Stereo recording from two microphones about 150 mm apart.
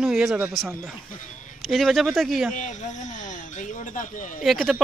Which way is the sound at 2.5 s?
55° left (ahead or behind).